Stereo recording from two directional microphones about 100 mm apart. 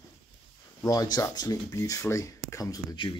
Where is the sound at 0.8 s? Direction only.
40° left (ahead or behind).